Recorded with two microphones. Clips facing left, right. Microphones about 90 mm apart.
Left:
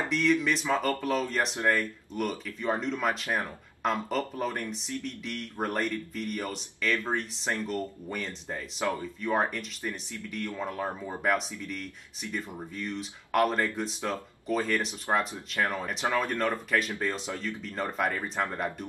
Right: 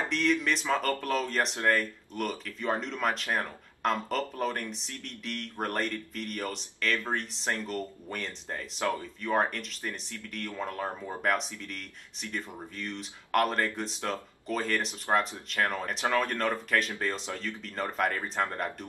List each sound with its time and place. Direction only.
0.1 s speech: centre (ahead or behind)